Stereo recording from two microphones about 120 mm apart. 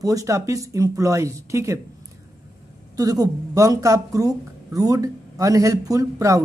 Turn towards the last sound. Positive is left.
turn(degrees=-30)  # may be behind; listen again after turning